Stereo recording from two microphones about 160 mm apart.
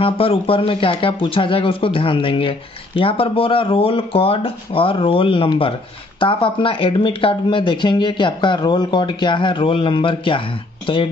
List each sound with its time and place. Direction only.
0.0 s speech: 35° left (ahead or behind)